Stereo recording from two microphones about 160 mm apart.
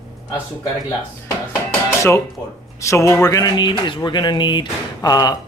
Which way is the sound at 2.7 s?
20° left (ahead or behind).